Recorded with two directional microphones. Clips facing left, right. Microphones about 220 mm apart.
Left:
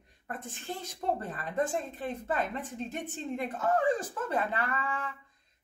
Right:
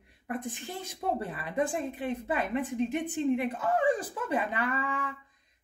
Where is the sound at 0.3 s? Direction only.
15° right (ahead or behind).